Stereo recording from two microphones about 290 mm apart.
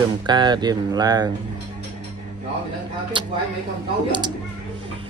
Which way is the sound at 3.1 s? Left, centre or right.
Centre.